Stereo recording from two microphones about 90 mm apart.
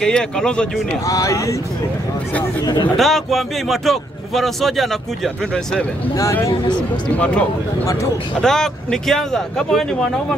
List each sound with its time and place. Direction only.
0.0 s speech: 10° left (ahead or behind)
1.0 s speech: 40° left (ahead or behind)
2.6 s speech: 50° left (ahead or behind)
3.0 s speech: centre (ahead or behind)
7.2 s speech: 15° left (ahead or behind)
7.8 s speech: 35° left (ahead or behind)
8.4 s speech: 5° left (ahead or behind)